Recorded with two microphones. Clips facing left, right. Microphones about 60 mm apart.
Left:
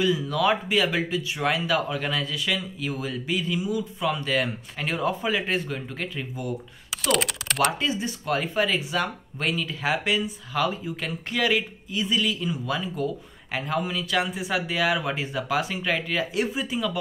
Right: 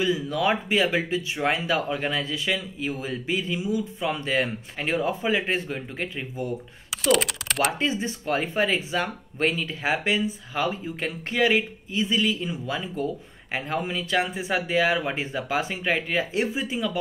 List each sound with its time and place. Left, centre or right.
0.0 s speech: right
6.9 s typing: centre
7.8 s speech: right